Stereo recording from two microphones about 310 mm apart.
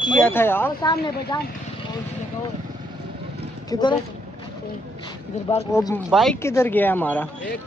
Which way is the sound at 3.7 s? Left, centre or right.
Centre.